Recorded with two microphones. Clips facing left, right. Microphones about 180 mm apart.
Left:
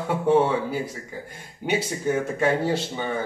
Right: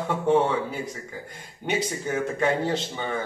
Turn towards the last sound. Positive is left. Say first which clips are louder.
# left 2 dB
turn(degrees=5)  # may be behind; listen again after turning